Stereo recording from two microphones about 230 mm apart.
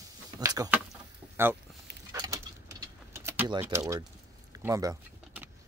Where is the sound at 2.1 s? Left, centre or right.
Centre.